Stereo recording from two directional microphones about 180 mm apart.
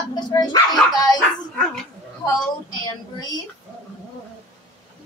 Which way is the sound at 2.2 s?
20° left (ahead or behind).